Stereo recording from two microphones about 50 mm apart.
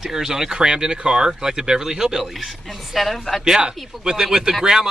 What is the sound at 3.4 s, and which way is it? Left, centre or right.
Speech, centre.